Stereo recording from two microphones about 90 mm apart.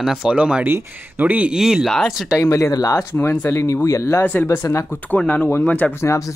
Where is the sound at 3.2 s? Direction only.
25° left (ahead or behind).